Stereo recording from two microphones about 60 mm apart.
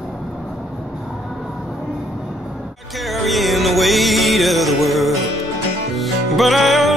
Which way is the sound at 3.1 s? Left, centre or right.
Centre.